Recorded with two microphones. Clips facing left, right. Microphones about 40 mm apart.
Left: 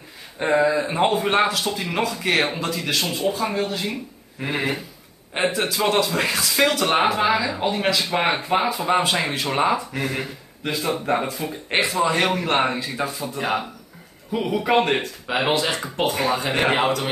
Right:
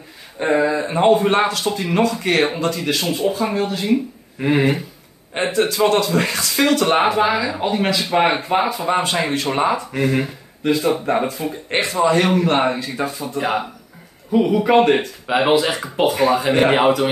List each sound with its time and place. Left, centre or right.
0.4 s speech: centre